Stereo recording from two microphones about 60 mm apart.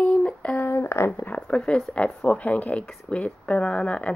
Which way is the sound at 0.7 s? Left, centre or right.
Left.